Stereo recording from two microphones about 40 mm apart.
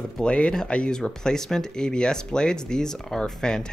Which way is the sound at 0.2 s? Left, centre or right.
Left.